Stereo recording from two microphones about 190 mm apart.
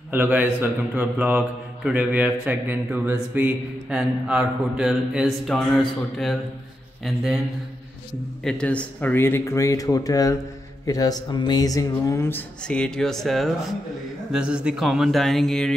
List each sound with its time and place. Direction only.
0.1 s a man's voice: 10° right (ahead or behind)
8.5 s a man's voice: 5° left (ahead or behind)